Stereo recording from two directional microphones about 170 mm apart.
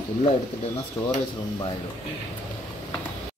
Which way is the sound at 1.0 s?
20° left (ahead or behind).